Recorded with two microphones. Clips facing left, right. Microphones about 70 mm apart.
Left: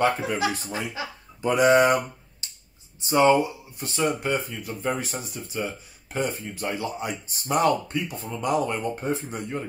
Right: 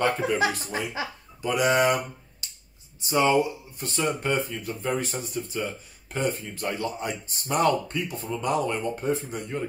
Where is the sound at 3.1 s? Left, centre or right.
Left.